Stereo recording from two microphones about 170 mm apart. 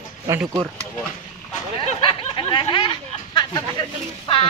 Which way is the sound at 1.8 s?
30° left (ahead or behind).